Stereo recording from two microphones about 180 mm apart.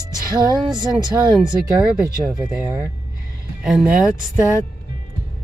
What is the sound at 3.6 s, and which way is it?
Speech, 5° right (ahead or behind).